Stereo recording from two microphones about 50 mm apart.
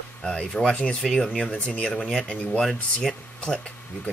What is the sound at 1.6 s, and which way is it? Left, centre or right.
Speech, left.